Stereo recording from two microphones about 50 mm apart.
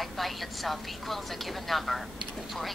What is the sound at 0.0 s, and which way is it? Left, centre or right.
A woman's voice, centre.